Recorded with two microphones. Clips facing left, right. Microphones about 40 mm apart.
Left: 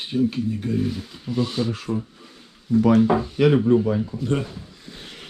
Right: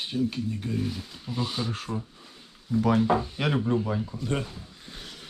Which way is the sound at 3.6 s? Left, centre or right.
Left.